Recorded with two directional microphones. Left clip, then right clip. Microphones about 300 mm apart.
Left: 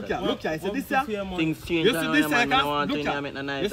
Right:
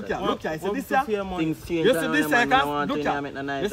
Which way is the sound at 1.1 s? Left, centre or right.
Centre.